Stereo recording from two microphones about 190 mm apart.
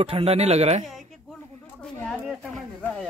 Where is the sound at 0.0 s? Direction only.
30° right (ahead or behind).